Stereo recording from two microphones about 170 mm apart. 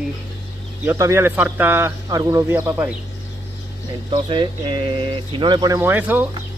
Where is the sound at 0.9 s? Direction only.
15° right (ahead or behind).